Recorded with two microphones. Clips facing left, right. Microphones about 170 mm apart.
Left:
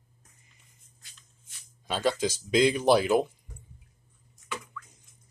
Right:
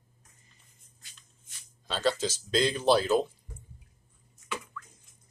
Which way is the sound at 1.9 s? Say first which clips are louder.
Left 2 dB; 10° left (ahead or behind).